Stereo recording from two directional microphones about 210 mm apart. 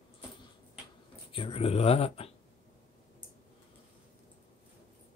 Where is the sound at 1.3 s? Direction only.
25° left (ahead or behind).